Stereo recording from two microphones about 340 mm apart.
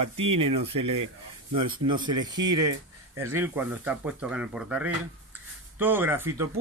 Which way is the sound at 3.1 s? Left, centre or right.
Centre.